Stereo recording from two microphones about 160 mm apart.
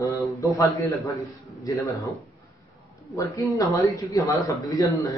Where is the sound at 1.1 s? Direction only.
20° left (ahead or behind).